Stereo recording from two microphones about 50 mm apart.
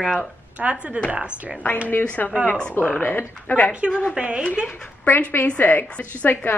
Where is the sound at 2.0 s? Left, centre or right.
Left.